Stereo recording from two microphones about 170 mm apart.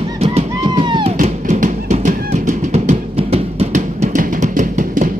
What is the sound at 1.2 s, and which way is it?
Music, 45° right (ahead or behind).